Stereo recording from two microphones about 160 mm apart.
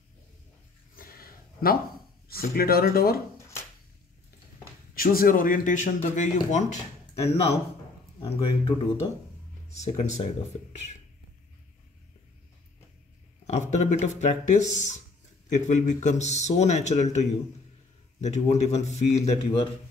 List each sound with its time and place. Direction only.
0.9 s a sound: 65° left (ahead or behind)
2.2 s speech: 70° left (ahead or behind)
3.3 s shuffling cards: 15° left (ahead or behind)
4.9 s speech: 65° left (ahead or behind); by 8.7 s 35° left (ahead or behind)
9.7 s speech: 45° left (ahead or behind)
13.5 s speech: 50° left (ahead or behind)